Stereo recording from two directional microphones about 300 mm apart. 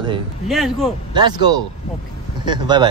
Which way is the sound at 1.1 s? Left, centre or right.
Centre.